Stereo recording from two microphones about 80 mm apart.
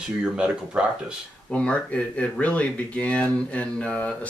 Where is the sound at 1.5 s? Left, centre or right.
Centre.